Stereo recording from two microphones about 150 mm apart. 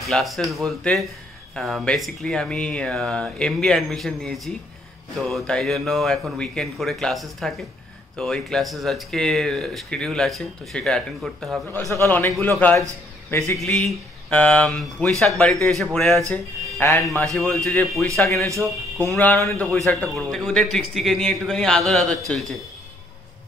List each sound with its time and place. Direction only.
0.0 s speech: centre (ahead or behind)
11.9 s a man's voice: 15° left (ahead or behind)